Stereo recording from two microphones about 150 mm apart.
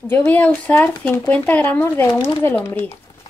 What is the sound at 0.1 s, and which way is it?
Speech, 10° left (ahead or behind).